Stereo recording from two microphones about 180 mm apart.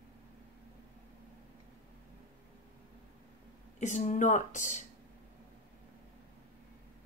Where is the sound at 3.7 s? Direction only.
40° left (ahead or behind).